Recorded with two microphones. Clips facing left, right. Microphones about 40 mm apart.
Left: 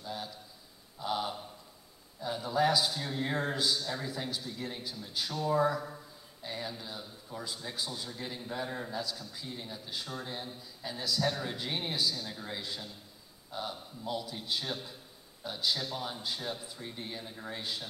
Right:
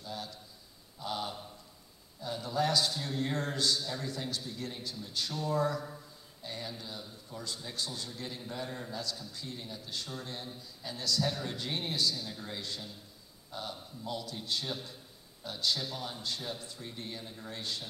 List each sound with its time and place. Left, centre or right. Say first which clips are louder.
0.0 s a man's voice: left 2 dB; centre